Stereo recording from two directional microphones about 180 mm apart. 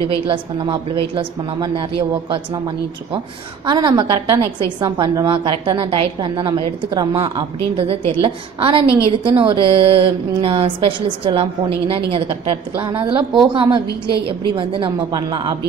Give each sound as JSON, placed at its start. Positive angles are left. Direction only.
{"t": 0.3, "sound": "a woman's voice", "side_deg": -30}